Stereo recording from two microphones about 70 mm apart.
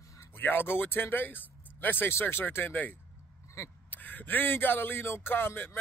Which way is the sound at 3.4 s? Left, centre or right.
Left.